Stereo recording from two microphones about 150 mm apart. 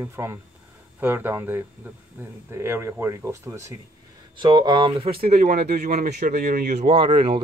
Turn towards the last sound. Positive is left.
turn(degrees=-35)  # may be behind; listen again after turning